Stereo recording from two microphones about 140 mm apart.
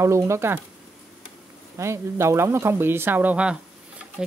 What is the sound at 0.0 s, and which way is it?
Speech, 20° right (ahead or behind).